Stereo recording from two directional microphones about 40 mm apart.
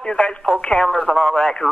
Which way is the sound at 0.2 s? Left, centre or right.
Left.